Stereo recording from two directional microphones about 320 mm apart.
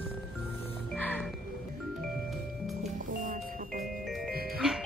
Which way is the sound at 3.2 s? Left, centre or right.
Right.